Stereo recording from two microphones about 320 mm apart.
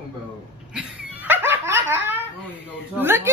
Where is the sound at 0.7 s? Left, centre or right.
Centre.